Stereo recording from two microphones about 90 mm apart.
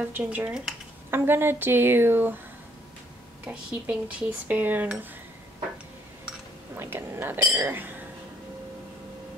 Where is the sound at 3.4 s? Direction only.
10° right (ahead or behind).